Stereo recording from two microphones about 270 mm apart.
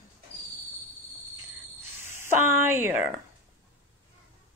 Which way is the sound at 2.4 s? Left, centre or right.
Centre.